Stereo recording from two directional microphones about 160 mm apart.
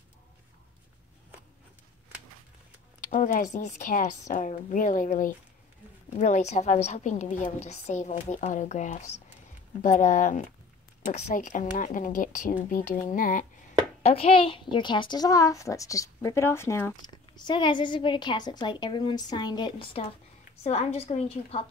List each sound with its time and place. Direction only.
3.1 s a woman's voice: 60° left (ahead or behind)
14.0 s a child's voice: 35° left (ahead or behind); by 17.1 s 15° left (ahead or behind)
17.4 s a child's voice: 30° left (ahead or behind)